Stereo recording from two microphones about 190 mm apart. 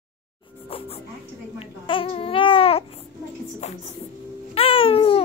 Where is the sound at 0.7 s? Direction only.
30° left (ahead or behind).